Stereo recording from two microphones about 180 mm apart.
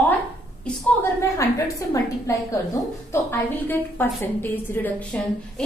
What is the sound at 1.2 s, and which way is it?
A woman's voice, 15° left (ahead or behind).